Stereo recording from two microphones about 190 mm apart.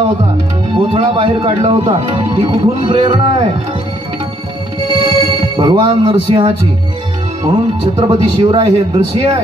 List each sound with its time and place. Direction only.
0.7 s speech: 25° right (ahead or behind)
5.0 s music: 25° right (ahead or behind)
7.4 s speech: 25° right (ahead or behind)